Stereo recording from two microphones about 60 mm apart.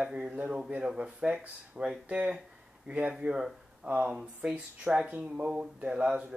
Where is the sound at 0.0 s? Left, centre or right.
Centre.